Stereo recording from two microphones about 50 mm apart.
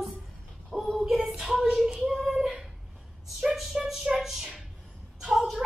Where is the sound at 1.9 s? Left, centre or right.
Centre.